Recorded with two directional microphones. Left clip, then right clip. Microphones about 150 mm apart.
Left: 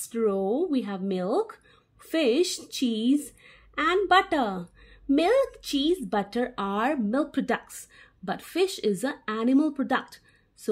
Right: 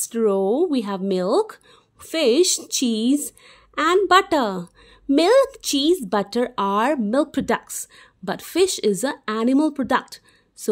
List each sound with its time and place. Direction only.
0.0 s speech: 55° right (ahead or behind)